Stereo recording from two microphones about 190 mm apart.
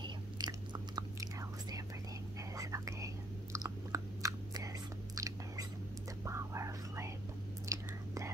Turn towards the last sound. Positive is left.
turn(degrees=-15)  # may be behind; listen again after turning